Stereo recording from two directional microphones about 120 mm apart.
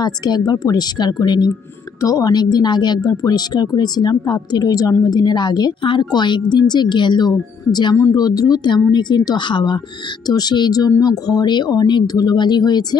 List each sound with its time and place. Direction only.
0.0 s a woman's voice: 35° left (ahead or behind)